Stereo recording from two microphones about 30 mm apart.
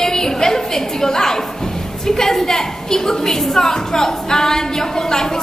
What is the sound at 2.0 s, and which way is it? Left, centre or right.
A woman's voice, centre.